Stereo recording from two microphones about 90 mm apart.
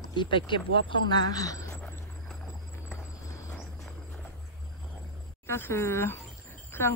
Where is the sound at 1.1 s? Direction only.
45° left (ahead or behind).